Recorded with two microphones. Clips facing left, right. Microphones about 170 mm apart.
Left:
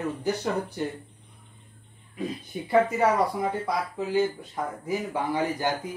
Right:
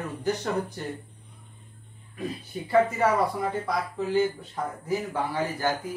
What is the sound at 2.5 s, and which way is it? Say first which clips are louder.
Speech: left 1 dB; 15° left (ahead or behind).